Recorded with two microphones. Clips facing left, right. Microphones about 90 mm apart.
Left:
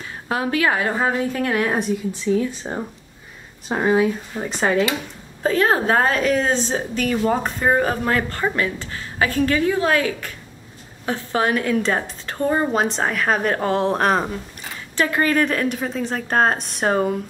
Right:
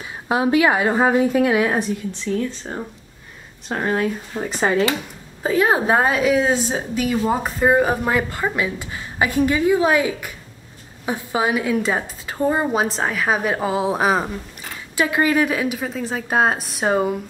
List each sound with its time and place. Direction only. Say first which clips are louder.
0.3 s a woman's voice: right 4 dB; 20° right (ahead or behind)